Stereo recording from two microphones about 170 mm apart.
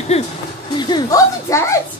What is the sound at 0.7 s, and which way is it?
Speech, 25° left (ahead or behind).